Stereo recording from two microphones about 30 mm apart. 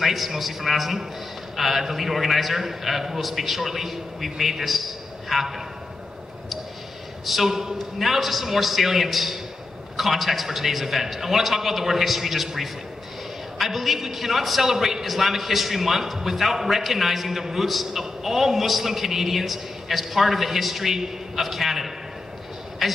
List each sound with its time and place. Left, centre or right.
0.0 s a man's voice: centre
7.4 s a man's voice: centre
8.0 s a man's voice: centre
22.8 s a sound: centre